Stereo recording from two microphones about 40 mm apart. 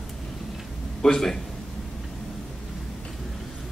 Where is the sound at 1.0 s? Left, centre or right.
Centre.